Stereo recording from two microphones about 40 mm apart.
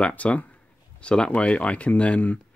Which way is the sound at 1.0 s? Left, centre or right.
Left.